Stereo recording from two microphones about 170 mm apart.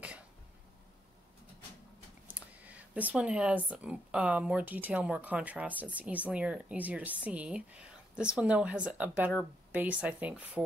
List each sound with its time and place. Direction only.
2.2 s a woman's voice: 10° right (ahead or behind)